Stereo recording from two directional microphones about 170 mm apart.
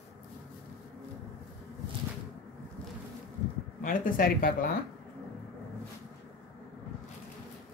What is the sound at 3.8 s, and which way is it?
Speech, 55° left (ahead or behind).